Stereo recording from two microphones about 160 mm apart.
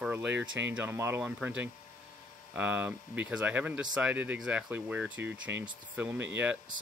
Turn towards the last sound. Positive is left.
turn(degrees=-10)  # may be behind; listen again after turning